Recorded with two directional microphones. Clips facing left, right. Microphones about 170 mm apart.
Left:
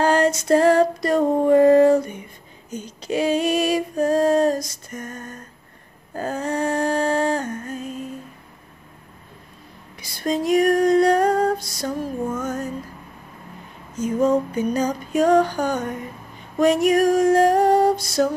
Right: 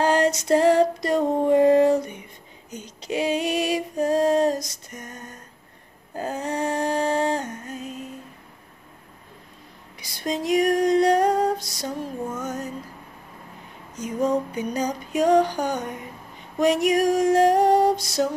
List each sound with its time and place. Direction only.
0.0 s female singing: 15° right (ahead or behind)
6.1 s dog: 15° right (ahead or behind)
9.9 s female singing: 20° right (ahead or behind)
12.4 s music: 20° right (ahead or behind)
13.9 s music: 15° right (ahead or behind)
16.5 s female singing: 20° right (ahead or behind)